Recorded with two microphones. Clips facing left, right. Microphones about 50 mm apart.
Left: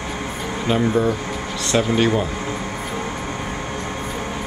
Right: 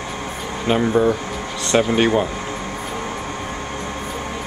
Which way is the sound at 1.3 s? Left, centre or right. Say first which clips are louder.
Even; centre.